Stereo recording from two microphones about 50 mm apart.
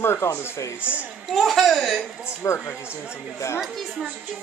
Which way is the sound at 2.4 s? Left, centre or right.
Left.